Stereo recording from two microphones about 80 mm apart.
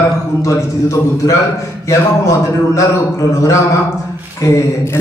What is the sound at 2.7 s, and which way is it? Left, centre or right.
A man's voice, left.